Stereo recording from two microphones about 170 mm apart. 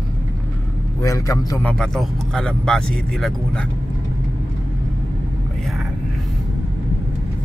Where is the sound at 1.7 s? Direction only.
5° left (ahead or behind).